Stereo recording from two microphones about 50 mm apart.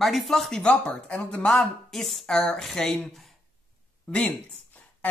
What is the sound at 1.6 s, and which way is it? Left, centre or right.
Speech, centre.